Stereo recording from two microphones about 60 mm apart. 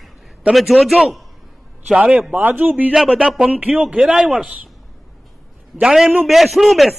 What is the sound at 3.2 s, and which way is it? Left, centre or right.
Speech, centre.